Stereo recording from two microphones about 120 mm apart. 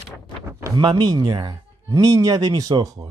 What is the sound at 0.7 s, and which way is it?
Speech, 40° right (ahead or behind).